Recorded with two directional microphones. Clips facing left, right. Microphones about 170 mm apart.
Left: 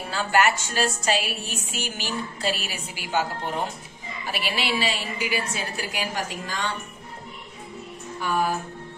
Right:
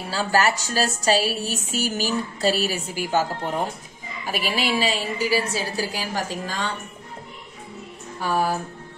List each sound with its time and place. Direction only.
0.1 s a woman's voice: 35° right (ahead or behind)
4.3 s a woman's voice: 45° right (ahead or behind)
8.2 s a woman's voice: 35° right (ahead or behind)